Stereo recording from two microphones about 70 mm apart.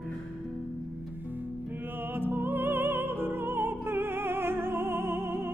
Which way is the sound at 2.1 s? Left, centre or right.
Right.